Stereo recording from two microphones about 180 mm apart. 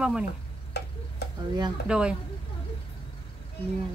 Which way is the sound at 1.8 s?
5° right (ahead or behind).